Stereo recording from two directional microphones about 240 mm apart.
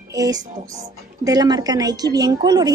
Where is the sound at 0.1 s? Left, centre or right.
Centre.